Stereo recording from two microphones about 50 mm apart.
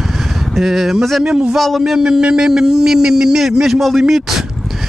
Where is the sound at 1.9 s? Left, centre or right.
Centre.